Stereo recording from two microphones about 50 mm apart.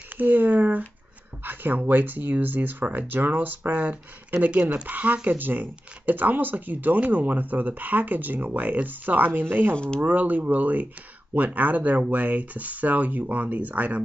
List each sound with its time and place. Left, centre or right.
0.2 s speech: right